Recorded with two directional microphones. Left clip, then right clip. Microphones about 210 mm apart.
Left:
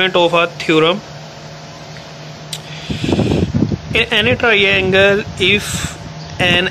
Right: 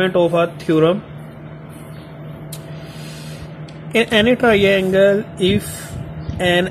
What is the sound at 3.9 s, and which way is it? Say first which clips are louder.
Speech: even; 25° right (ahead or behind).